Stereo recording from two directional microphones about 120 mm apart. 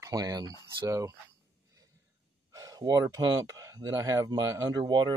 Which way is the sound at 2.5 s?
30° right (ahead or behind).